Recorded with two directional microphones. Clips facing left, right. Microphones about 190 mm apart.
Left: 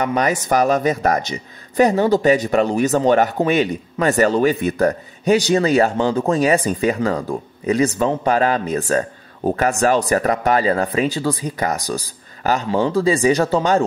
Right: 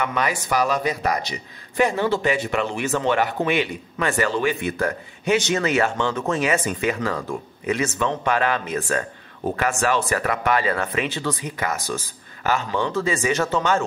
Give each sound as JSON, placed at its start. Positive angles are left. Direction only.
{"t": 0.0, "sound": "speech", "side_deg": 40}